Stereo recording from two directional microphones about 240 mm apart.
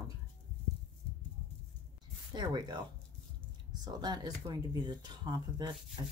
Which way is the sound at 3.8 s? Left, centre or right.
Centre.